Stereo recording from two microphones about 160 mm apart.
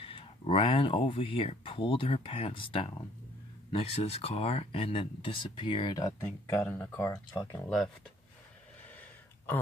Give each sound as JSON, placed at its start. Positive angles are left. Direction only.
{"t": 0.0, "sound": "speech", "side_deg": 35}